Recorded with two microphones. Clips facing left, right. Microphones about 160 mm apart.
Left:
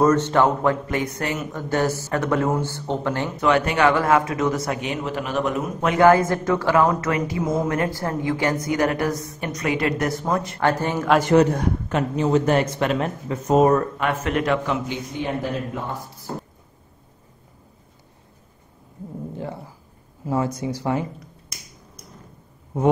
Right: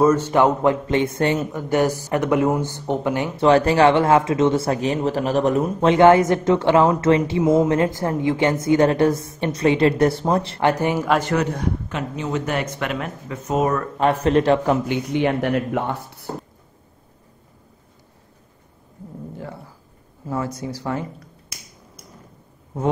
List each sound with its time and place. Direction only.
0.0 s speech: 10° right (ahead or behind); by 1.5 s 30° right (ahead or behind)
1.5 s speech: 15° right (ahead or behind)
3.3 s speech: 30° right (ahead or behind)
10.6 s speech: 15° right (ahead or behind)
11.5 s speech: 40° left (ahead or behind)
13.9 s a man's voice: 35° right (ahead or behind)
14.9 s speech: 70° right (ahead or behind)
19.3 s a sound: 20° left (ahead or behind)
20.2 s speech: 20° left (ahead or behind)